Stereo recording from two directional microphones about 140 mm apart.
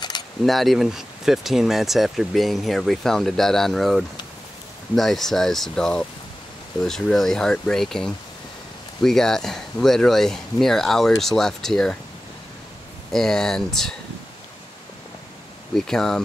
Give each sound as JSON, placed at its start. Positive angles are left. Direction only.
{"t": 0.1, "sound": "a sound", "side_deg": 30}
{"t": 0.5, "sound": "speech", "side_deg": 0}
{"t": 13.1, "sound": "speech", "side_deg": 5}
{"t": 15.7, "sound": "speech", "side_deg": 5}